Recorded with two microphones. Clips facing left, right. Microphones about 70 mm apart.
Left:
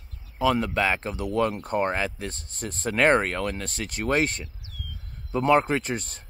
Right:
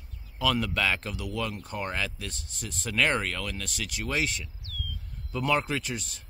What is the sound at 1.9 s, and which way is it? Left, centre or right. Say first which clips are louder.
Speech: left 5 dB; left.